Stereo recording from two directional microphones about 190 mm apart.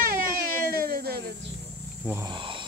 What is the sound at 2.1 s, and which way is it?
Speech, 20° right (ahead or behind).